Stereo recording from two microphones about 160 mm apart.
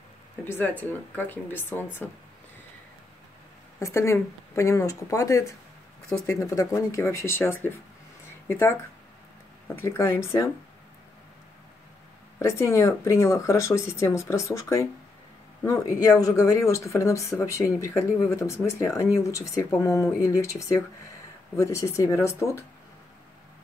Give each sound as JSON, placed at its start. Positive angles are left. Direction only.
{"t": 0.5, "sound": "speech", "side_deg": 15}
{"t": 3.8, "sound": "speech", "side_deg": 15}
{"t": 9.8, "sound": "speech", "side_deg": 15}
{"t": 12.4, "sound": "speech", "side_deg": 15}